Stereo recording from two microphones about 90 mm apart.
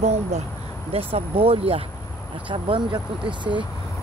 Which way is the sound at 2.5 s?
60° right (ahead or behind).